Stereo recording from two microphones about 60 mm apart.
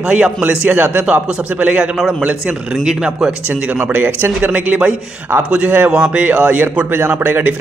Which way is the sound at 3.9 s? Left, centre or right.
Right.